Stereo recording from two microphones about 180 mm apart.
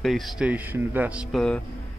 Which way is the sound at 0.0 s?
Centre (ahead or behind).